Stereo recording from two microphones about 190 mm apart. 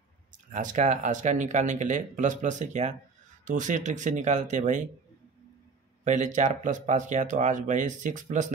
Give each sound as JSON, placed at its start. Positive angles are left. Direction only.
{"t": 0.5, "sound": "speech", "side_deg": -40}
{"t": 6.0, "sound": "speech", "side_deg": -40}